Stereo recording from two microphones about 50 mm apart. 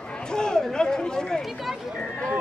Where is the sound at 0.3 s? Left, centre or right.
Centre.